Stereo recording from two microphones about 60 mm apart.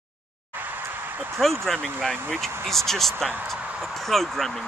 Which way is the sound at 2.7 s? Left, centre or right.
Centre.